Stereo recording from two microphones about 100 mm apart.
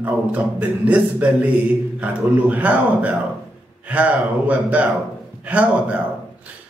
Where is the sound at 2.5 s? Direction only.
15° right (ahead or behind).